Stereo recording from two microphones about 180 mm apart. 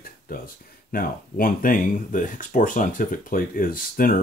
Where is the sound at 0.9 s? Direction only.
50° left (ahead or behind).